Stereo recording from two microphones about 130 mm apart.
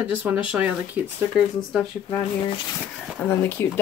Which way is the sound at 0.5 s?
10° right (ahead or behind).